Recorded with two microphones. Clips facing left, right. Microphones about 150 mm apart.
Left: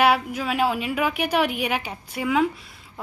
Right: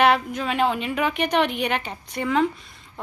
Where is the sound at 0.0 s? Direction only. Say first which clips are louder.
Right 1 dB; 5° left (ahead or behind).